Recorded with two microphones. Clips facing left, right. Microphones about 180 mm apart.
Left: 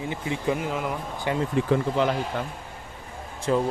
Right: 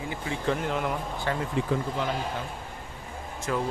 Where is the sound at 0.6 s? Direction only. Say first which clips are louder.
Even; 5° left (ahead or behind).